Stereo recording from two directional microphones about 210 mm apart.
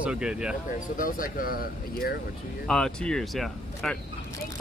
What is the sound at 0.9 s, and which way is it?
Speech, 40° left (ahead or behind).